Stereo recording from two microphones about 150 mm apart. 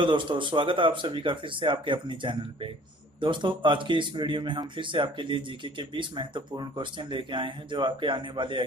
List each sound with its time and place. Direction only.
0.0 s speech: 35° right (ahead or behind)